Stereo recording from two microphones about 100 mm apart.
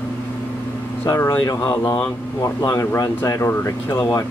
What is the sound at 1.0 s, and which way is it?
Speech, 25° left (ahead or behind).